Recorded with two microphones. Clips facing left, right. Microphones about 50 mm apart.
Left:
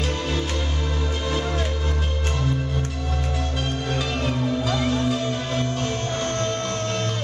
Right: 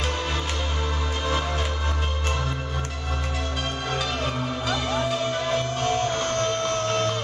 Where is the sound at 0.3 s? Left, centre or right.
Right.